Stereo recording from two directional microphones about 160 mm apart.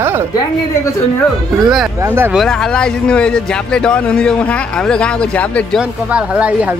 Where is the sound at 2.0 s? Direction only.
15° right (ahead or behind).